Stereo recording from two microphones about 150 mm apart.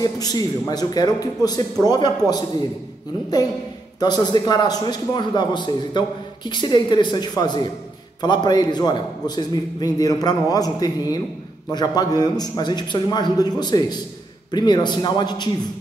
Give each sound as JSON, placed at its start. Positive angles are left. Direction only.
{"t": 0.0, "sound": "a man's voice", "side_deg": 25}
{"t": 4.0, "sound": "a man's voice", "side_deg": 25}